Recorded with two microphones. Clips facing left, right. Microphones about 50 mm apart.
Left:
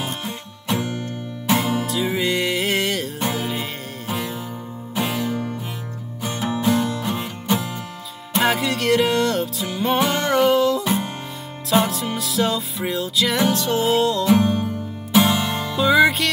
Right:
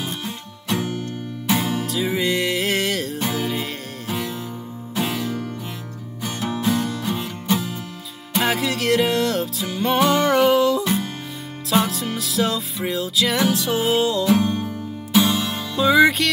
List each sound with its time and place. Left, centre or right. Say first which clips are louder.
0.2 s music: left 1 dB; centre
6.8 s music: left 1 dB; centre